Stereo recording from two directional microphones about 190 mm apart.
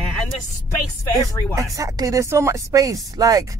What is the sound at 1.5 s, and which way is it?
Speech, 15° right (ahead or behind).